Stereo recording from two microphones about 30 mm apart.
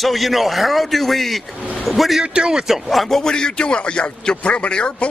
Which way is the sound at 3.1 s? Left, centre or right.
Left.